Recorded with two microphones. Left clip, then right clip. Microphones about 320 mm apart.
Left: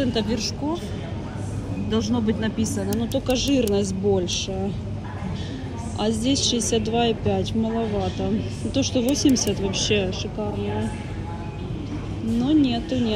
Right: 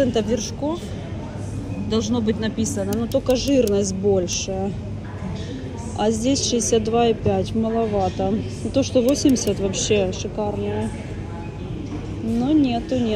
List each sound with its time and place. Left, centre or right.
0.0 s speech: centre
1.9 s speech: centre
5.9 s speech: centre
8.7 s speech: centre
9.2 s speech: centre
12.4 s speech: centre